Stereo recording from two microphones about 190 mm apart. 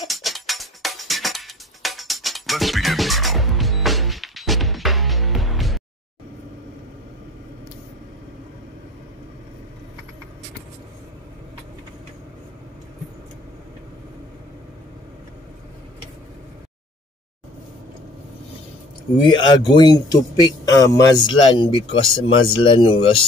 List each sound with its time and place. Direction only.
0.0 s music: centre (ahead or behind)
19.1 s speech: 25° left (ahead or behind)